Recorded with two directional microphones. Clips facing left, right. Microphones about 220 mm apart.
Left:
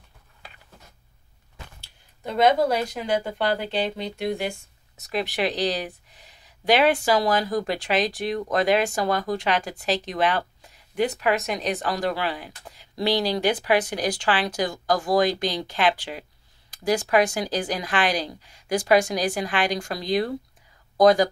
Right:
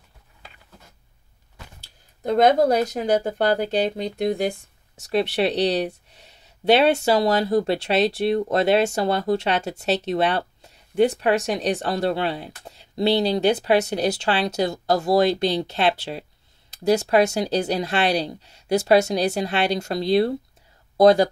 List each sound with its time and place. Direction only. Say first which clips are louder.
2.2 s speech: right 3 dB; 40° right (ahead or behind); by 21.3 s 25° right (ahead or behind)